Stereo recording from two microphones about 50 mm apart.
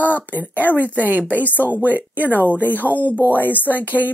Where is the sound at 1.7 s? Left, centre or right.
Right.